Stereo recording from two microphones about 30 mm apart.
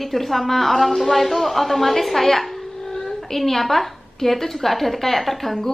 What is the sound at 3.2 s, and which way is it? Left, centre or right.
A woman's voice, centre.